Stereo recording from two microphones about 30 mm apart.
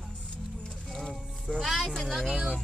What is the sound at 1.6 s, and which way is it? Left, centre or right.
Speech, centre.